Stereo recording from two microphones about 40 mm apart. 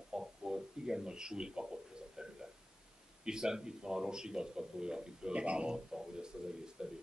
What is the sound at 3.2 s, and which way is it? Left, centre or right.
Speech, centre.